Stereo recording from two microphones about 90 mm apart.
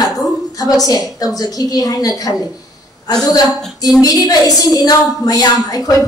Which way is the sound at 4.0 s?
45° left (ahead or behind).